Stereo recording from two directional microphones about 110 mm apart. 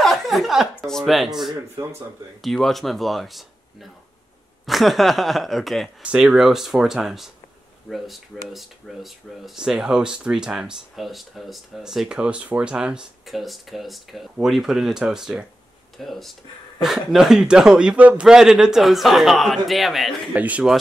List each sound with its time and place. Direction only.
0.0 s speech: centre (ahead or behind)
1.8 s speech: 25° right (ahead or behind)
2.4 s speech: centre (ahead or behind)
20.3 s speech: 15° right (ahead or behind)